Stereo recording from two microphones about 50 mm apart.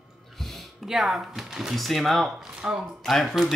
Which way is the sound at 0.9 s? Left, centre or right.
Centre.